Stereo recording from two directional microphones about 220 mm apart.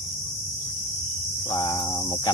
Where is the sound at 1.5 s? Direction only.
20° left (ahead or behind).